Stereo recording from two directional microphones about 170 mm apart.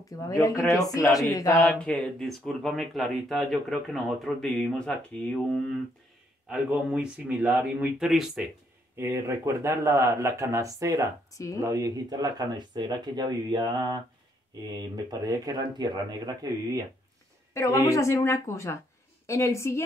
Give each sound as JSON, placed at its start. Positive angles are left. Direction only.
{"t": 0.0, "sound": "speech", "side_deg": 20}
{"t": 1.7, "sound": "speech", "side_deg": 5}
{"t": 6.5, "sound": "speech", "side_deg": -5}
{"t": 8.9, "sound": "speech", "side_deg": -15}
{"t": 11.3, "sound": "speech", "side_deg": 20}
{"t": 11.6, "sound": "speech", "side_deg": -20}
{"t": 17.6, "sound": "a woman's voice", "side_deg": 20}